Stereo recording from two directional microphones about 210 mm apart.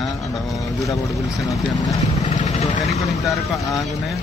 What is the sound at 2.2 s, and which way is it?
Vehicle, 35° left (ahead or behind).